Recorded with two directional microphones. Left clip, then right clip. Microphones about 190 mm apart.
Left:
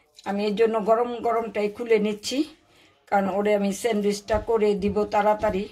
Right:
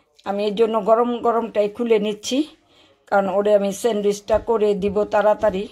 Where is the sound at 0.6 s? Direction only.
30° right (ahead or behind).